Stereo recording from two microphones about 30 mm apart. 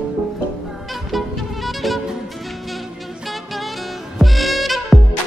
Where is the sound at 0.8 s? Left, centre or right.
Centre.